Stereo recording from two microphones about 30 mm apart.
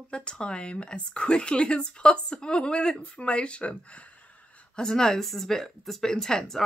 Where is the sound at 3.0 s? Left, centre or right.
Left.